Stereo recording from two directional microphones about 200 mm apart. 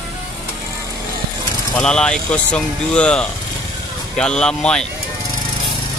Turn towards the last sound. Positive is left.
turn(degrees=5)  # may be behind; listen again after turning